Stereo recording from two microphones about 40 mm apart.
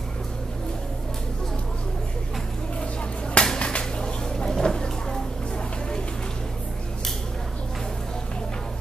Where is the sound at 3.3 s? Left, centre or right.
Left.